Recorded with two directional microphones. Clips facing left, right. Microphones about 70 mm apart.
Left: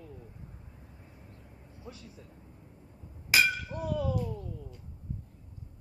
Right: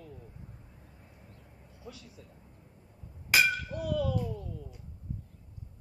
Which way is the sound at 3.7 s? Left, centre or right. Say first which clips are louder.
Right 1 dB; left.